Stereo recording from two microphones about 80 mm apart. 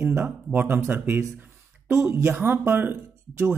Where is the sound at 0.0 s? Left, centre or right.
Right.